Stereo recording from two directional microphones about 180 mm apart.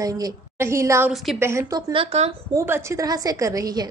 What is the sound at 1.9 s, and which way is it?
Speech, 30° right (ahead or behind).